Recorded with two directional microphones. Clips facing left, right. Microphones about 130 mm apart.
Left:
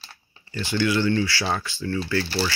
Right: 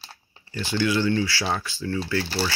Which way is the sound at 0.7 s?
15° right (ahead or behind).